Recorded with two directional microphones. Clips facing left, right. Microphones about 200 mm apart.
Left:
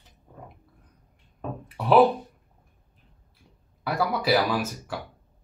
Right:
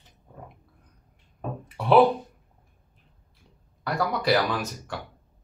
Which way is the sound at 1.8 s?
Centre (ahead or behind).